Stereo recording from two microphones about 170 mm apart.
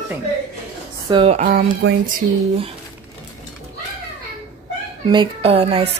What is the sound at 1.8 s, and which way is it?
Speech, 90° right.